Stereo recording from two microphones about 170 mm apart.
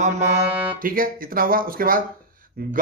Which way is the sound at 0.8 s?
55° right (ahead or behind).